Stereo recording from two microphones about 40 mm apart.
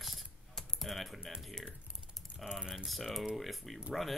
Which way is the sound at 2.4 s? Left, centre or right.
Centre.